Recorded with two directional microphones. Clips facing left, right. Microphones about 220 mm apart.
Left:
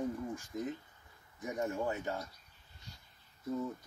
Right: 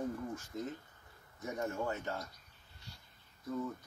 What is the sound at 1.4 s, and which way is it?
Speech, 15° left (ahead or behind).